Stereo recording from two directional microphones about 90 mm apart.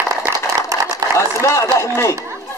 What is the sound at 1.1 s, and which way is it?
Speech, 30° left (ahead or behind).